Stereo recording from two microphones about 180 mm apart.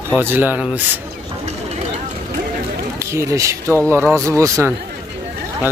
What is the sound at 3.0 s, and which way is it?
Speech, 15° right (ahead or behind).